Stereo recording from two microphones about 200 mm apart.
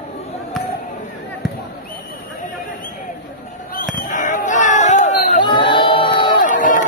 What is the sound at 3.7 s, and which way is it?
Basketball bounce, 40° left (ahead or behind).